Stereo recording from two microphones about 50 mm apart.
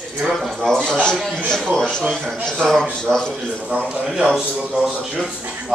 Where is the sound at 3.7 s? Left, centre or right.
Right.